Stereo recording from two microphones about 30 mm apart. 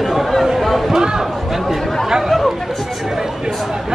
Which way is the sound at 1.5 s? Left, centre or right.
Centre.